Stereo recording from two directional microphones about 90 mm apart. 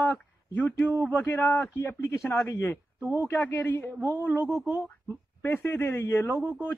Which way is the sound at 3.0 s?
20° right (ahead or behind).